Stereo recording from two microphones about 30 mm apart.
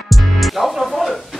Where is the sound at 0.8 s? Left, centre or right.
Centre.